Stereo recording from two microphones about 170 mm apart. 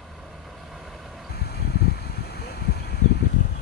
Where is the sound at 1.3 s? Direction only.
70° left (ahead or behind).